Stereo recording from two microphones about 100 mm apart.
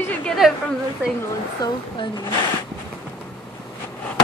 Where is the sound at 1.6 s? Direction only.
45° left (ahead or behind).